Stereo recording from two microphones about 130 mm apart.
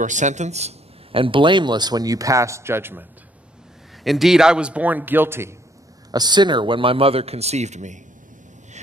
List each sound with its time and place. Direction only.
0.0 s a man's voice: 70° right (ahead or behind); by 3.1 s 15° right (ahead or behind)
4.0 s a man's voice: centre (ahead or behind); by 5.6 s 20° right (ahead or behind)
6.1 s speech: 35° right (ahead or behind); by 8.0 s 65° right (ahead or behind)